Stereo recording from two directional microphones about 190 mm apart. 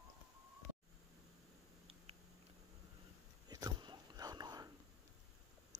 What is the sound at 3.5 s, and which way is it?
Whispering, 20° right (ahead or behind).